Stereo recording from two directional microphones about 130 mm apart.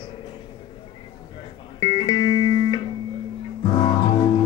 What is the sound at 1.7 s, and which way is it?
Music, 40° left (ahead or behind).